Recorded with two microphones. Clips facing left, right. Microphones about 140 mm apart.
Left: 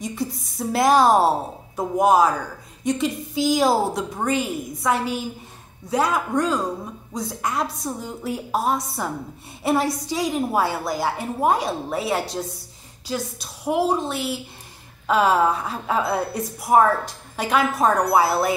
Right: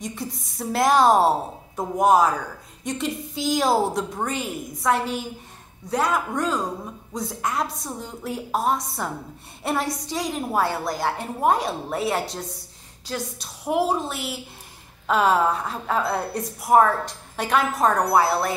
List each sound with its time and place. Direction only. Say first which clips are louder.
0.0 s a woman's voice: left 4 dB; centre (ahead or behind)